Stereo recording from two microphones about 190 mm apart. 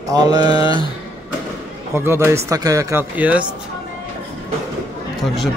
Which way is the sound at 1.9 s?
15° right (ahead or behind).